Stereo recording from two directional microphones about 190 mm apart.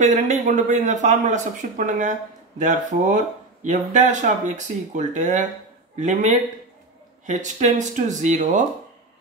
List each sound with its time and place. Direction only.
0.0 s speech: 40° right (ahead or behind)